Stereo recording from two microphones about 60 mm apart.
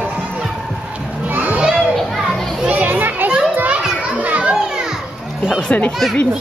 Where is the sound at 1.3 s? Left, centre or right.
Right.